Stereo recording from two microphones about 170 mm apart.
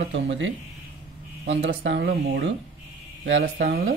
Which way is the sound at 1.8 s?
85° right.